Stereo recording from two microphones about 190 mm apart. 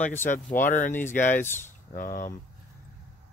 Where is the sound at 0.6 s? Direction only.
45° left (ahead or behind).